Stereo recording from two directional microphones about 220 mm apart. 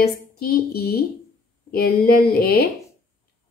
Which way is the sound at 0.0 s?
45° left (ahead or behind).